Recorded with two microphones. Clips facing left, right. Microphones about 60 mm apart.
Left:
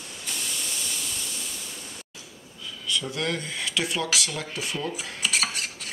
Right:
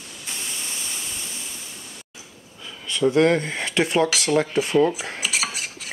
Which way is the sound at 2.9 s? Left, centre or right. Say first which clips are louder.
Right 11 dB; right.